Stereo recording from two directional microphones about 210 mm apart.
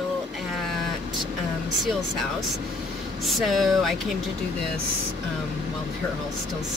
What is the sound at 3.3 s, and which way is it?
Speech, centre (ahead or behind).